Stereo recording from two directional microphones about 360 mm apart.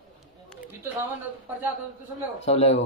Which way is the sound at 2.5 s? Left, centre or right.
Centre.